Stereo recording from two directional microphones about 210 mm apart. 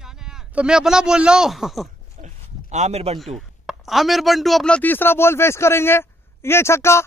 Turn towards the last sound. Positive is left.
turn(degrees=10)  # may be behind; listen again after turning